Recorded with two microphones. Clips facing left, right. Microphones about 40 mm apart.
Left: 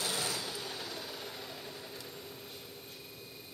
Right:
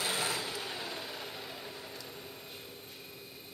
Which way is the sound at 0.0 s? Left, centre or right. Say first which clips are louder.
Right 2 dB; right.